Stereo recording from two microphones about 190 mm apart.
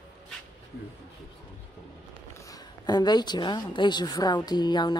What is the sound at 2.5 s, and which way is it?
A woman's voice, 20° left (ahead or behind).